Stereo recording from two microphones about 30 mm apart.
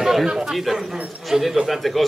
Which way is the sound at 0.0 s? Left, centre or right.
Centre.